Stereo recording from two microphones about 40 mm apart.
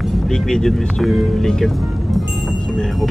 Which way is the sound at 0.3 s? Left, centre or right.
Centre.